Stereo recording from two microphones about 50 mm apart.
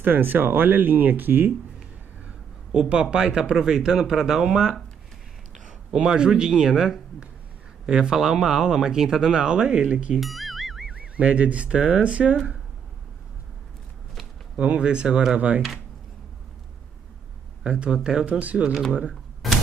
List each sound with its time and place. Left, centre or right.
0.0 s speech: right
2.7 s speech: centre
5.9 s speech: centre
10.1 s music: centre
10.9 s fowl: right
14.6 s speech: right
17.6 s speech: right
18.4 s speech: right
19.4 s a sound: centre